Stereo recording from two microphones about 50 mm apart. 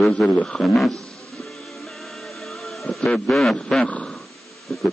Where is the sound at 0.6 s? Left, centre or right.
Centre.